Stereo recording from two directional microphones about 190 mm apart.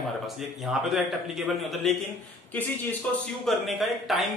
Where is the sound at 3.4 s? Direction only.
Centre (ahead or behind).